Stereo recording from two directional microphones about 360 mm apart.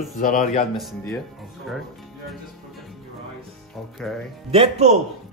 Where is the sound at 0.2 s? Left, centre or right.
Left.